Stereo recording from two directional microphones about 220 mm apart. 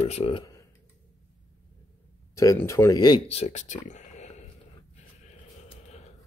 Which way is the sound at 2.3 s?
15° left (ahead or behind).